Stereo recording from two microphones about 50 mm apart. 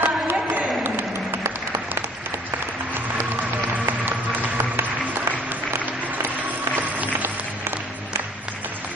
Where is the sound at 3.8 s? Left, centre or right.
Right.